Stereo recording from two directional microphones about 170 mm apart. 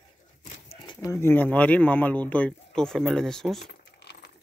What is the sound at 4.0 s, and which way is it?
Keys jangling, 75° left (ahead or behind).